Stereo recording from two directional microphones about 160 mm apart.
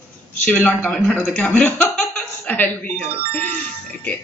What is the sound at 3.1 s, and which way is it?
Speech, 35° right (ahead or behind).